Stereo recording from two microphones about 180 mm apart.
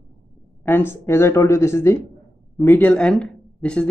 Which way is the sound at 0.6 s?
10° left (ahead or behind).